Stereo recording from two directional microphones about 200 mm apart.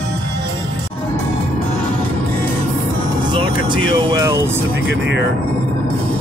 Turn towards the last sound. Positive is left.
turn(degrees=-15)  # may be behind; listen again after turning